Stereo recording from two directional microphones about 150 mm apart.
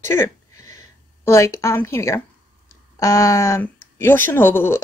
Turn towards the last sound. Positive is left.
turn(degrees=15)  # may be behind; listen again after turning